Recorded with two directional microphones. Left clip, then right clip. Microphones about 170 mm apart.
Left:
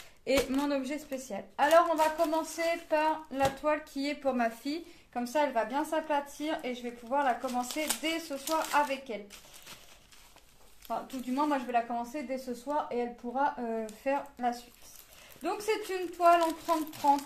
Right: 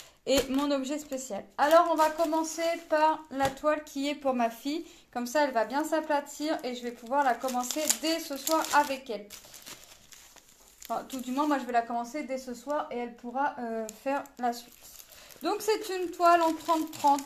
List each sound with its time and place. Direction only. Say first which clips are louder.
0.3 s speech: right 2 dB; 10° left (ahead or behind)
0.6 s speech: right 2 dB; 20° right (ahead or behind)
5.1 s speech: right 2 dB; 35° right (ahead or behind)
10.9 s speech: right 1 dB; 35° right (ahead or behind)
12.6 s speech: left 1 dB; centre (ahead or behind)
13.8 s speech: even; 30° right (ahead or behind)